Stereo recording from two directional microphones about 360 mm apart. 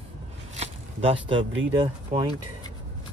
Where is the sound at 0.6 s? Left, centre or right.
Centre.